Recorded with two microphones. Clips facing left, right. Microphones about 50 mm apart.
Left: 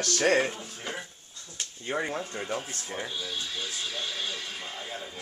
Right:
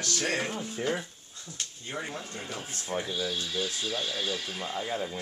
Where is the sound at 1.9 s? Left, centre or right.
Left.